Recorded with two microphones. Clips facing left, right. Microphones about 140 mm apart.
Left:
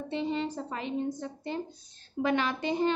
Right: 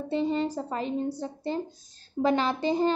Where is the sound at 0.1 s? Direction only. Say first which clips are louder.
Right 5 dB; 40° right (ahead or behind).